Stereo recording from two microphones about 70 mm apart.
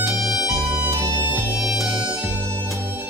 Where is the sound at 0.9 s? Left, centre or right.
Right.